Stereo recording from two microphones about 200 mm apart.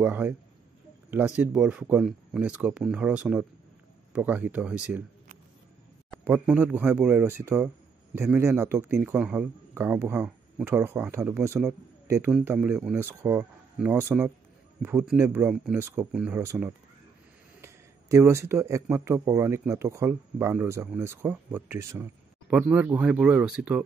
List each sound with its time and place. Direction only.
0.0 s speech: 10° right (ahead or behind)
6.1 s speech: 10° right (ahead or behind)